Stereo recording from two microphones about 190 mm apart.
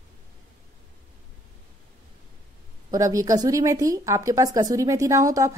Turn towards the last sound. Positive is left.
turn(degrees=-15)  # may be behind; listen again after turning